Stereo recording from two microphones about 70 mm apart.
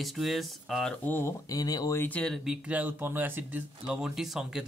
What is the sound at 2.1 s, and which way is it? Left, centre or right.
Speech, centre.